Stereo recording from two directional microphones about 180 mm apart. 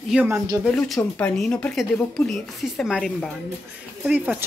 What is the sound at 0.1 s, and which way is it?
Speech, 10° right (ahead or behind).